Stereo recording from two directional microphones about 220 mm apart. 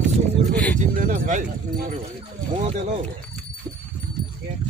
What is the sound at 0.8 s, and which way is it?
Speech, 35° right (ahead or behind).